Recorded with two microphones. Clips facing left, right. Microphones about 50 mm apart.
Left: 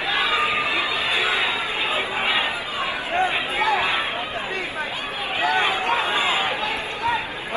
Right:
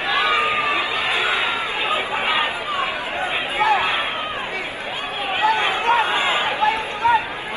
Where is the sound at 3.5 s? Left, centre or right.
Right.